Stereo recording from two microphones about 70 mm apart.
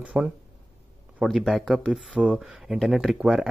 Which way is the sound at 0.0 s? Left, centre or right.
Centre.